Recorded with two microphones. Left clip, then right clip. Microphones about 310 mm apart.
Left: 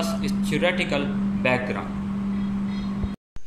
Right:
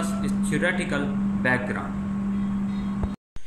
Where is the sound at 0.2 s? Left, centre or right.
Centre.